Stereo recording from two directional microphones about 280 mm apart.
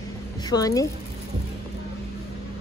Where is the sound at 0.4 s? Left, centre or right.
Centre.